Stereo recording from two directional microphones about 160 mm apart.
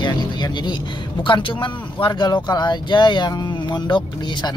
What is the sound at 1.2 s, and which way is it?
Speech, 30° left (ahead or behind).